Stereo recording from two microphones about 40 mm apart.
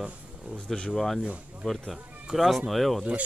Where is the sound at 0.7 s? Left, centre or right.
Centre.